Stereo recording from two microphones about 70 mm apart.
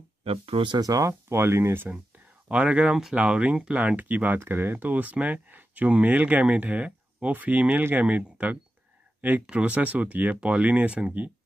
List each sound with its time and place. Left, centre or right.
0.7 s speech: right
1.3 s speech: right
1.9 s speech: centre